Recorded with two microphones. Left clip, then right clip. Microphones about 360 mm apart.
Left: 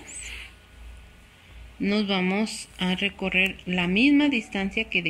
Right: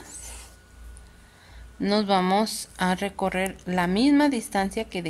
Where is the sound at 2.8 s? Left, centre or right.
Right.